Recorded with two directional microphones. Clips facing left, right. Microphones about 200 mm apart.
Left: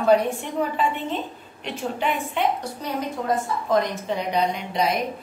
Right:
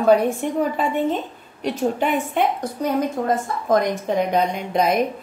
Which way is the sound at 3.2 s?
45° right (ahead or behind).